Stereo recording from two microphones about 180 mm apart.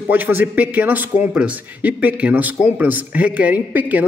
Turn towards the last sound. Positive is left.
turn(degrees=-10)  # may be behind; listen again after turning